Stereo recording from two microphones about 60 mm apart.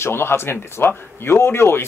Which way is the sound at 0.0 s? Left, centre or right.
Left.